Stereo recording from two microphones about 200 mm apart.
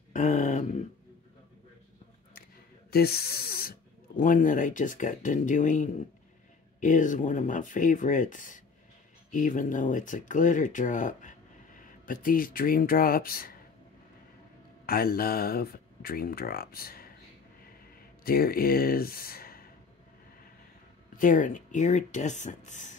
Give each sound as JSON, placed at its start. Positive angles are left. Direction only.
{"t": 0.1, "sound": "a sound", "side_deg": 40}
{"t": 2.9, "sound": "spray", "side_deg": 50}
{"t": 4.2, "sound": "speech", "side_deg": 40}
{"t": 14.9, "sound": "speech", "side_deg": 50}
{"t": 18.2, "sound": "speech", "side_deg": 50}
{"t": 21.2, "sound": "speech", "side_deg": 40}